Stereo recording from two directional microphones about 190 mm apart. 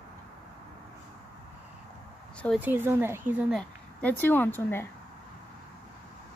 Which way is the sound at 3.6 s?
10° left (ahead or behind).